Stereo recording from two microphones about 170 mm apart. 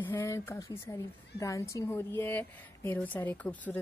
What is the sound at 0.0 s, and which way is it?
A woman's voice, 15° left (ahead or behind).